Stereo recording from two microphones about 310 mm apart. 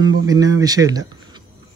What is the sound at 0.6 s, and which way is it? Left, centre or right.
Speech, centre.